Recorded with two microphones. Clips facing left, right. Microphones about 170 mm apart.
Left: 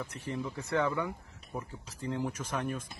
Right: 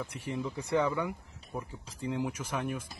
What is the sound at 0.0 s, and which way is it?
Speech, 10° right (ahead or behind).